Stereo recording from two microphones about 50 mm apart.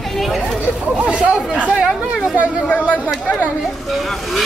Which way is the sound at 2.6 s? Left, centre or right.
Left.